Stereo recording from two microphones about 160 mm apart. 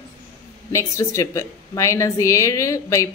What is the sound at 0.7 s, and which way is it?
A woman's voice, 20° left (ahead or behind).